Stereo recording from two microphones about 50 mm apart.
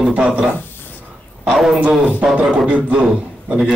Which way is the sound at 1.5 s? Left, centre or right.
Centre.